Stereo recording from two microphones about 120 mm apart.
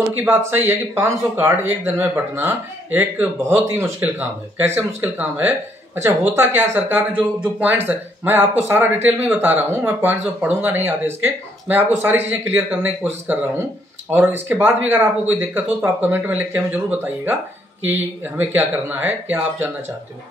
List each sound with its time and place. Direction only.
0.2 s speech: 20° right (ahead or behind)